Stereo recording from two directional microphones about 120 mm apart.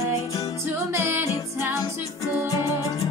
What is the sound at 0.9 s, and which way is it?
Music, 20° right (ahead or behind).